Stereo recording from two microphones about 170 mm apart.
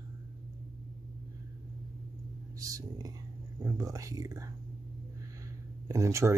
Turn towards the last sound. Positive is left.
turn(degrees=-15)  # may be behind; listen again after turning